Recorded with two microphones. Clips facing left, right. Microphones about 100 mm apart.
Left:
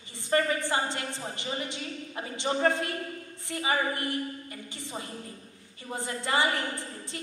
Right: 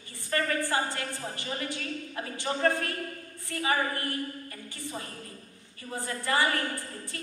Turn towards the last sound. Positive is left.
turn(degrees=20)  # may be behind; listen again after turning